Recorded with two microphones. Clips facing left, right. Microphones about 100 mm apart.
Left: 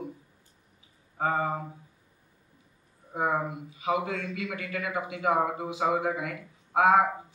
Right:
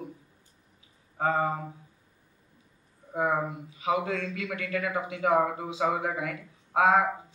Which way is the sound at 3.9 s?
25° left (ahead or behind).